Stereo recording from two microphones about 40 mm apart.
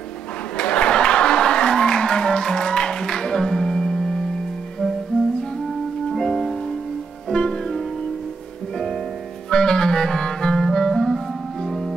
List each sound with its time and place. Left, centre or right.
0.6 s a sound: left
6.1 s music: centre
9.5 s clarinet: centre